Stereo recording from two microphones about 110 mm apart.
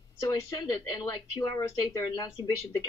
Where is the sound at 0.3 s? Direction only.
40° left (ahead or behind).